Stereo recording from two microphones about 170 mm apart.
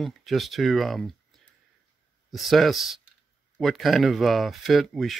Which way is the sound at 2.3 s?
Centre (ahead or behind).